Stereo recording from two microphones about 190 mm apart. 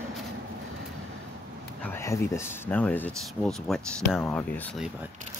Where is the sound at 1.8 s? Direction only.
15° left (ahead or behind).